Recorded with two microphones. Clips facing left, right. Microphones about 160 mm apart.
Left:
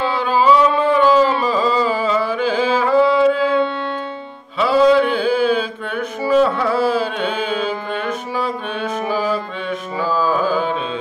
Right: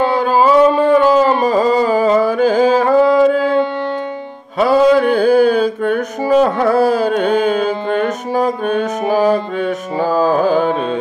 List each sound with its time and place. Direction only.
0.0 s a sound: 45° right (ahead or behind)
4.6 s music: 50° right (ahead or behind)
9.9 s carnatic music: 45° right (ahead or behind)